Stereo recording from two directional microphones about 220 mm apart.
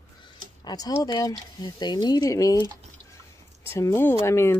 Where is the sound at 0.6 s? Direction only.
15° left (ahead or behind).